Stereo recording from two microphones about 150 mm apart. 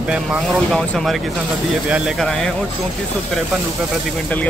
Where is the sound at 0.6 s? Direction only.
5° left (ahead or behind).